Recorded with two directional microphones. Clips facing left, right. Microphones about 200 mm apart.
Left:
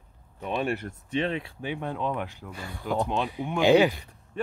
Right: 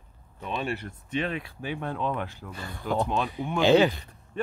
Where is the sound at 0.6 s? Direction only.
50° left (ahead or behind).